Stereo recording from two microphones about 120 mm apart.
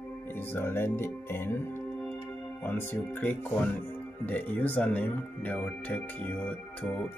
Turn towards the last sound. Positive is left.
turn(degrees=10)  # may be behind; listen again after turning